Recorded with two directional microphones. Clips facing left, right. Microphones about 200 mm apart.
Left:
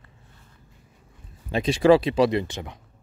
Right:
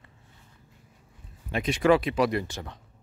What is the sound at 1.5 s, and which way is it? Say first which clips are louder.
Speech: left 5 dB; 30° left (ahead or behind).